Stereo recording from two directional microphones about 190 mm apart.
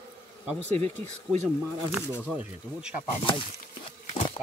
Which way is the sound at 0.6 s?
35° right (ahead or behind).